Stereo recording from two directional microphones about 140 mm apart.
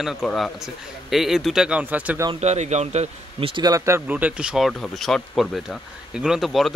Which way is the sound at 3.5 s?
25° right (ahead or behind).